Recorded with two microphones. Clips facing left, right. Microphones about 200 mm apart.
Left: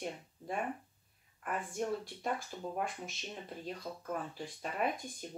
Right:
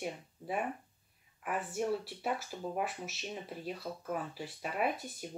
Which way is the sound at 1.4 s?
5° right (ahead or behind).